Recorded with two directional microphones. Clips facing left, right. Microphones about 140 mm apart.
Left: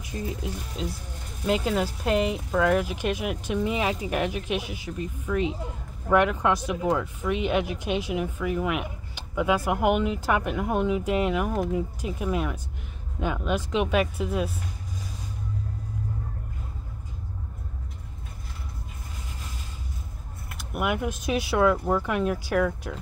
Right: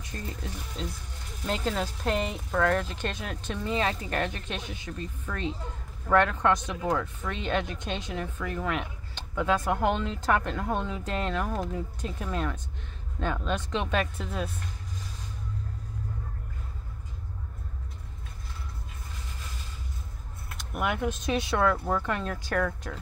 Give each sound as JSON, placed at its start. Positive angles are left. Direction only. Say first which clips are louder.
{"t": 0.0, "sound": "speech", "louder": "left 6 dB", "side_deg": 10}
{"t": 20.5, "sound": "speech", "louder": "left 3 dB", "side_deg": 5}